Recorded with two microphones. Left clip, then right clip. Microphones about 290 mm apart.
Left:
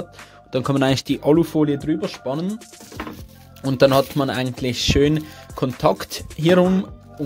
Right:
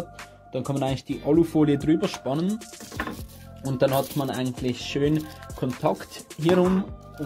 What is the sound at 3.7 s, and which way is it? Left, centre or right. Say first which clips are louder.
Speech: left 7 dB; left.